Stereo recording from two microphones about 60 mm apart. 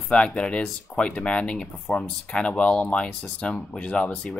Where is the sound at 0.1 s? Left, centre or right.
Centre.